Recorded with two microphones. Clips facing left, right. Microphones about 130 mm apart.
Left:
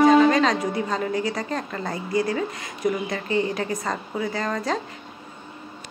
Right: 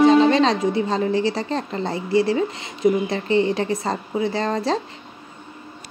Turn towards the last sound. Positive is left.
turn(degrees=-30)  # may be behind; listen again after turning